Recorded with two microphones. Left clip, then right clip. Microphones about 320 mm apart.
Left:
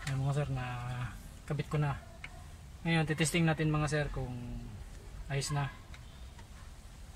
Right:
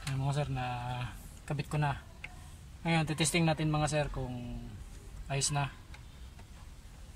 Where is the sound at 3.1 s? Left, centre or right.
Centre.